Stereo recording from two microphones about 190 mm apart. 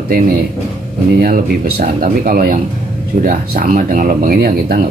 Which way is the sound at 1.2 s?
50° right (ahead or behind).